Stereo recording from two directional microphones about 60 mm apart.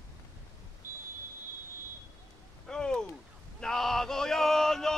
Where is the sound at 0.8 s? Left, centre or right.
Right.